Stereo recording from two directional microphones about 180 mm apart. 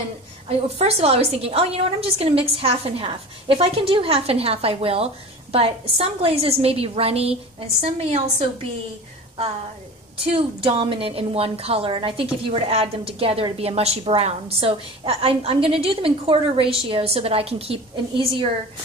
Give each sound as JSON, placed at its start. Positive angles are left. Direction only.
{"t": 0.5, "sound": "a woman's voice", "side_deg": -35}
{"t": 10.2, "sound": "a woman's voice", "side_deg": -35}